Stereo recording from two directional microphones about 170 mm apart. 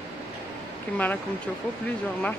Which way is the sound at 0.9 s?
10° left (ahead or behind).